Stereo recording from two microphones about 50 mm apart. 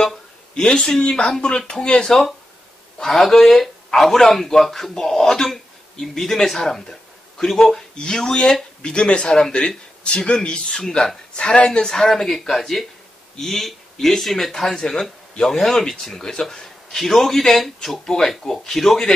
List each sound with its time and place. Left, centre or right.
0.7 s speech: centre
3.0 s speech: centre
11.3 s a man's voice: centre